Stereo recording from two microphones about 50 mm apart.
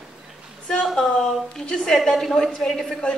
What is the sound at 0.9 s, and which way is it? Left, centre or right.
A woman's voice, centre.